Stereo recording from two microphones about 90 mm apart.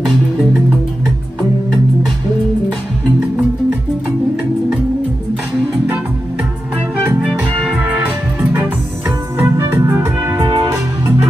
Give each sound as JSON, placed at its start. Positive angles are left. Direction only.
{"t": 7.2, "sound": "music", "side_deg": -15}
{"t": 9.4, "sound": "music", "side_deg": -30}